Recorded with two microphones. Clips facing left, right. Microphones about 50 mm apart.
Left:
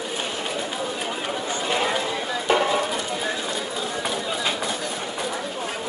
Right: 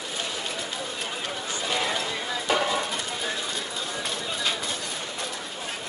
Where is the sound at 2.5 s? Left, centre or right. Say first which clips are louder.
Left 4 dB; left.